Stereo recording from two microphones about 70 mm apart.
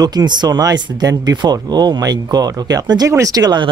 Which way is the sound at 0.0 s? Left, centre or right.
Right.